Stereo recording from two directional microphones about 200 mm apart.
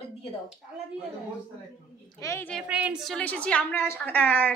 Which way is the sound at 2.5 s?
5° right (ahead or behind).